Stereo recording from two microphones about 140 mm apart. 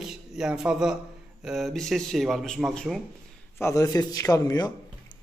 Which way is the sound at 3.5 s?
20° left (ahead or behind).